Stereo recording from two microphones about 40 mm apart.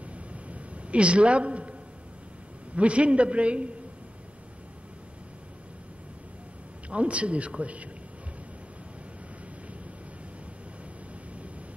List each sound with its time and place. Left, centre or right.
0.0 s a sound: right
2.7 s a man's voice: right
6.9 s a man's voice: right